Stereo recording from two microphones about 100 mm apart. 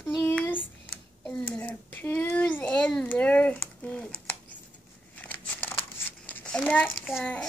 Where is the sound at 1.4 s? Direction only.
15° left (ahead or behind).